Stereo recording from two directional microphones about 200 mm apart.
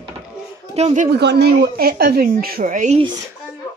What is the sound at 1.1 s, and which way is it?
A woman's voice, 55° right (ahead or behind).